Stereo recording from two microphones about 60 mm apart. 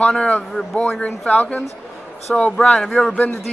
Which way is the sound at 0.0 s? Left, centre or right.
Centre.